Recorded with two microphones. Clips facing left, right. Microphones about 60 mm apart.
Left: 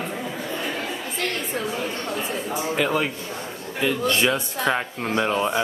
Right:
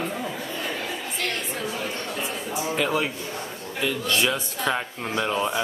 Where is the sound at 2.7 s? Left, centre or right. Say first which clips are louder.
Left 2 dB; centre.